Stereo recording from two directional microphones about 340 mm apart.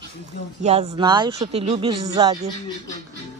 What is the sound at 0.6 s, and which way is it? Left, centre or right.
Speech, centre.